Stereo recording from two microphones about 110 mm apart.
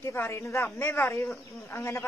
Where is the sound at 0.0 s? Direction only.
25° left (ahead or behind).